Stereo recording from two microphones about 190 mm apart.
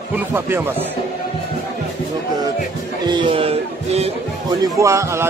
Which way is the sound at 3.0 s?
25° right (ahead or behind).